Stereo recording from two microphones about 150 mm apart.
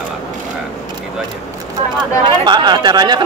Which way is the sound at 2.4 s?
30° right (ahead or behind).